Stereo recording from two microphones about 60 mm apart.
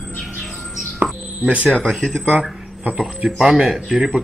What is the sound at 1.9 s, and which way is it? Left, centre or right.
Speech, centre.